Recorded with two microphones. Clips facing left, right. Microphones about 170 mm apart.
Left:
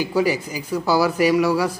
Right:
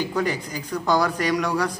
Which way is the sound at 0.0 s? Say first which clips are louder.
Left 4 dB; 10° left (ahead or behind).